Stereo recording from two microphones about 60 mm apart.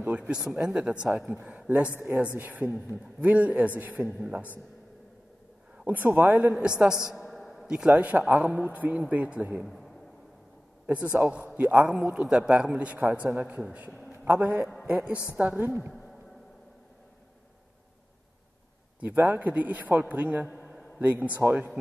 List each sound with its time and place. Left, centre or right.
0.2 s a man's voice: centre
5.9 s speech: right
6.6 s a sound: centre
7.6 s a man's voice: centre
7.9 s a man's voice: right
10.9 s a man's voice: right
14.2 s a man's voice: right
18.9 s a man's voice: right
21.4 s speech: right